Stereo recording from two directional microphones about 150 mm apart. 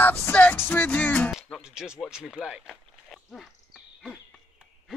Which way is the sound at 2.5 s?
Centre (ahead or behind).